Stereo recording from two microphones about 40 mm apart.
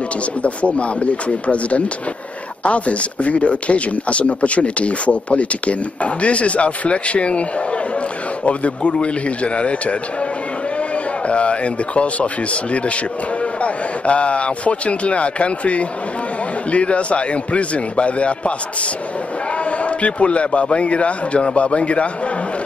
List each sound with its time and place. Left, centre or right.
0.4 s speech: left
8.5 s speech: left
11.2 s speech: left
13.6 s speech: left
19.8 s speech: left